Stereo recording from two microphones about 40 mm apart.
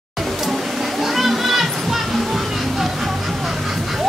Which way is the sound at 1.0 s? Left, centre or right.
Centre.